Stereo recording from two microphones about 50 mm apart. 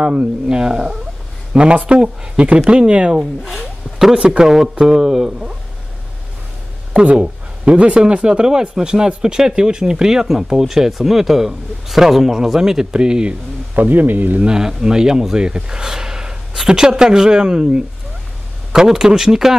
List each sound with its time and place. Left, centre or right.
0.0 s speech: centre
3.6 s zipper: centre
4.2 s speech: right
4.5 s speech: centre
7.1 s speech: right
13.7 s speech: right
14.4 s speech: centre